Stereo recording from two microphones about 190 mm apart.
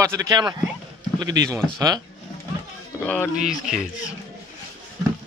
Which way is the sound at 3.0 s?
5° left (ahead or behind).